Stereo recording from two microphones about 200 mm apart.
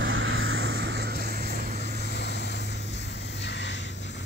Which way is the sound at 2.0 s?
55° left (ahead or behind).